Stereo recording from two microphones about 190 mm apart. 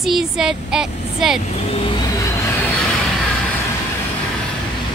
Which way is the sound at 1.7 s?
25° left (ahead or behind).